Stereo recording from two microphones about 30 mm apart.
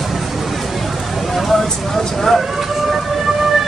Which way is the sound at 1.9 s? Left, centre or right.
Centre.